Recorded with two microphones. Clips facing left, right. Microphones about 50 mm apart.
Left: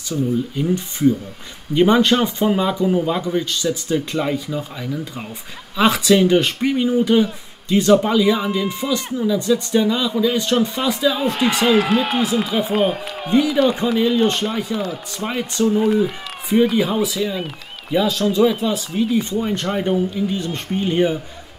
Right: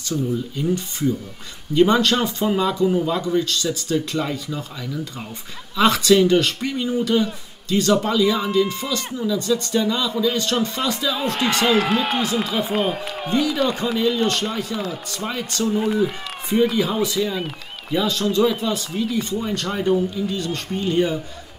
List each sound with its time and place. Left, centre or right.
0.1 s a man's voice: centre
15.2 s speech: centre
15.7 s speech: centre; by 21.2 s left